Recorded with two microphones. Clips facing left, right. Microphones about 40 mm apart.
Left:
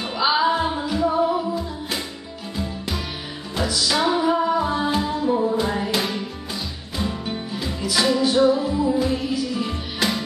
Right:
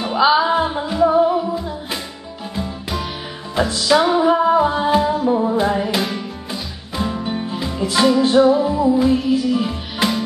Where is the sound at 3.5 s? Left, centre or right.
Right.